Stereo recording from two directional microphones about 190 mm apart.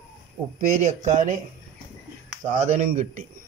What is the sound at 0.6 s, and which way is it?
Speech, 40° right (ahead or behind).